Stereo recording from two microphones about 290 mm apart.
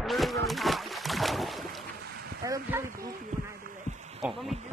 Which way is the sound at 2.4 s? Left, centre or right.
Centre.